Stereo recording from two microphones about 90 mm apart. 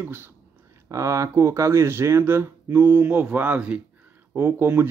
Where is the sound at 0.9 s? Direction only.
35° right (ahead or behind).